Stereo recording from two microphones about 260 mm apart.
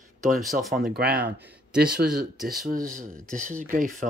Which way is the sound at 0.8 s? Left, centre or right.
Right.